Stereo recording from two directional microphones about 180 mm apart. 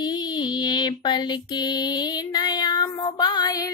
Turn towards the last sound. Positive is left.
turn(degrees=20)  # may be behind; listen again after turning